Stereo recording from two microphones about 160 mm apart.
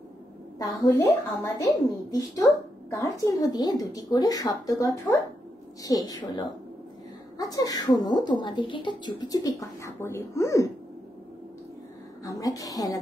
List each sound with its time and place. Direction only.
0.6 s speech: 20° left (ahead or behind)
3.3 s speech: 25° left (ahead or behind)
12.3 s speech: 20° left (ahead or behind)